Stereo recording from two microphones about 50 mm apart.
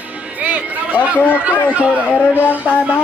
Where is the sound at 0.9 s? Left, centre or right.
Left.